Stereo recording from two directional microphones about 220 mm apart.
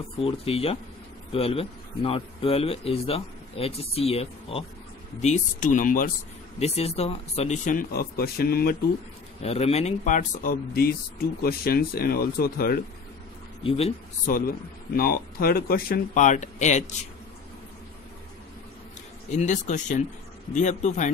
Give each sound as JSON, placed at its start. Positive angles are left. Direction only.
{"t": 0.2, "sound": "a man's voice", "side_deg": 25}
{"t": 9.4, "sound": "speech", "side_deg": 30}
{"t": 13.7, "sound": "a man's voice", "side_deg": 25}
{"t": 14.2, "sound": "speech", "side_deg": 40}
{"t": 19.3, "sound": "speech", "side_deg": 30}